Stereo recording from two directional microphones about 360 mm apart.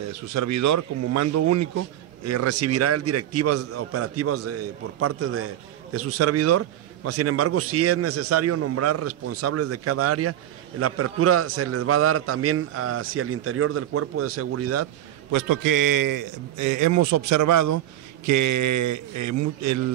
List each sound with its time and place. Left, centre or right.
0.1 s a man's voice: right
15.3 s a man's voice: right